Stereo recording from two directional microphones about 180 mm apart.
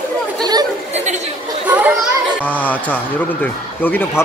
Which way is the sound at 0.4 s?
20° right (ahead or behind).